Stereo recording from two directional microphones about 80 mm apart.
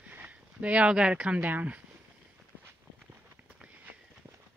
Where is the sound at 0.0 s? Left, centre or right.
Centre.